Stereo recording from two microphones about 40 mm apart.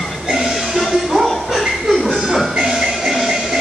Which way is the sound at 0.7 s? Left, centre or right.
Centre.